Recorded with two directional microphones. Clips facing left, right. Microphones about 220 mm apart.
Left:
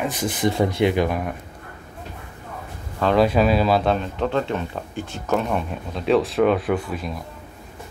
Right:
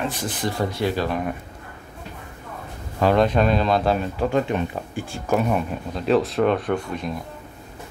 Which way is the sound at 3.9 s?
10° right (ahead or behind).